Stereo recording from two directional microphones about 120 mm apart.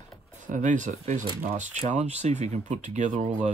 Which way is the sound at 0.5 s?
90° right.